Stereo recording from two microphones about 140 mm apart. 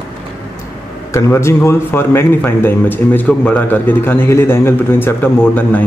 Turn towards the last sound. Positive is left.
turn(degrees=15)  # may be behind; listen again after turning